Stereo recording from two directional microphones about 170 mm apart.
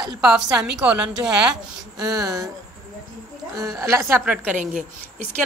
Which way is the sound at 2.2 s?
20° right (ahead or behind).